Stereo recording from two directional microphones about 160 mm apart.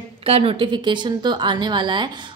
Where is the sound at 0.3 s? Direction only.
35° right (ahead or behind).